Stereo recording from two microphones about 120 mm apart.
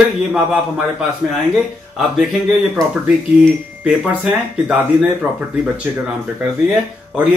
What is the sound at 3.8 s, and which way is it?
Speech, 5° right (ahead or behind).